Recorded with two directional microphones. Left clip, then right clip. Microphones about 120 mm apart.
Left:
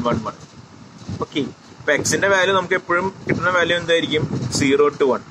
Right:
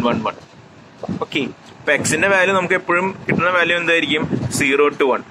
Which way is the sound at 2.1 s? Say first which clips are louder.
Right 1 dB; 35° right (ahead or behind).